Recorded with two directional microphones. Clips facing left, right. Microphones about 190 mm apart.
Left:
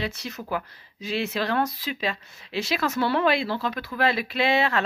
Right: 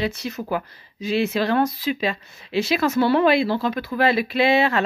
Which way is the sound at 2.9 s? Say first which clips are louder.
Right 5 dB; 5° right (ahead or behind).